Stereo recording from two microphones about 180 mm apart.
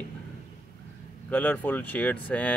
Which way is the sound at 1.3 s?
5° left (ahead or behind).